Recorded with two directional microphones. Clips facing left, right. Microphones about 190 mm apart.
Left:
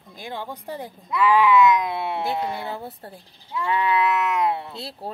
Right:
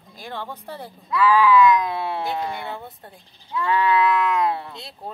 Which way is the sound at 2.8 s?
35° left (ahead or behind).